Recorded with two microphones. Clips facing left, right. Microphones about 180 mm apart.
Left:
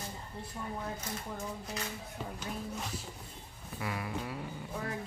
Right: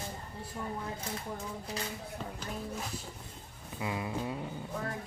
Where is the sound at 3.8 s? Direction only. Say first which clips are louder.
Right 3 dB; 20° right (ahead or behind).